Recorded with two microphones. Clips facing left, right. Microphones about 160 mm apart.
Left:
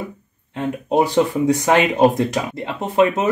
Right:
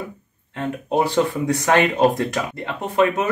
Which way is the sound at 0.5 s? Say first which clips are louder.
Left 3 dB; 20° left (ahead or behind).